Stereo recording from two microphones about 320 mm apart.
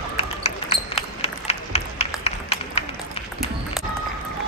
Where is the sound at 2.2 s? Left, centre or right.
Centre.